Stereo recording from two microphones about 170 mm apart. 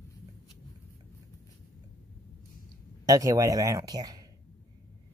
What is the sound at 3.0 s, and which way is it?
Speech, 20° right (ahead or behind).